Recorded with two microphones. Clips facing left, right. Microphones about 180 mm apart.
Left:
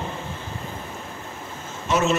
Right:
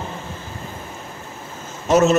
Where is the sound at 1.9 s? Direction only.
40° right (ahead or behind).